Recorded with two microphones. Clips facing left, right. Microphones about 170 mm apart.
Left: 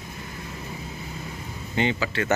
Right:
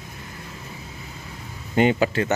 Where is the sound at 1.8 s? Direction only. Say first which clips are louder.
Right 6 dB; 45° right (ahead or behind).